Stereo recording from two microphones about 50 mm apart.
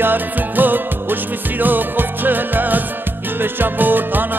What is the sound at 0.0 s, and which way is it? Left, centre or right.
Music, right.